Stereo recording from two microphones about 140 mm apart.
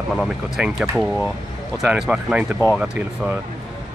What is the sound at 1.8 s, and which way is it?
Speech, 5° right (ahead or behind).